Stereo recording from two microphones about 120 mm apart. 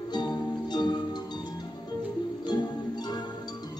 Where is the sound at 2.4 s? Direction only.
35° left (ahead or behind).